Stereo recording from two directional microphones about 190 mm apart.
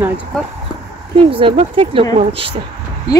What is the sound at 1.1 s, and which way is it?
Speech, 25° right (ahead or behind).